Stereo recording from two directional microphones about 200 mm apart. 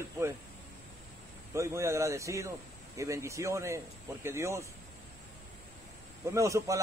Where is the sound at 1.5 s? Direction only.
15° right (ahead or behind).